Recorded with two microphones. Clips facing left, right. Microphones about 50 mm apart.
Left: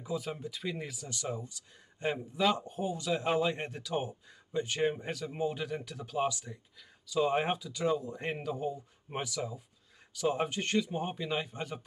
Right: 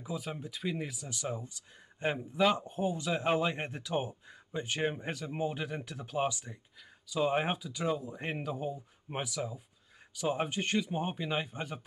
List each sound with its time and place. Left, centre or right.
0.0 s speech: centre